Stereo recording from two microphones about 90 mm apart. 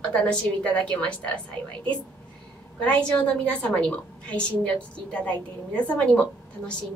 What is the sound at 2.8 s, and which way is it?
A woman's voice, 15° left (ahead or behind).